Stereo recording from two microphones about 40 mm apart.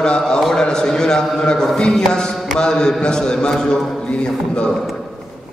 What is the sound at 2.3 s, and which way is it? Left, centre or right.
Mantra, centre.